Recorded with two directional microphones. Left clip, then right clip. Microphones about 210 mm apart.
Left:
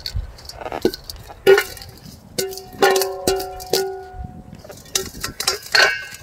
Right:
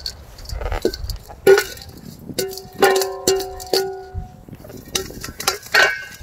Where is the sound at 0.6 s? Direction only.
20° right (ahead or behind).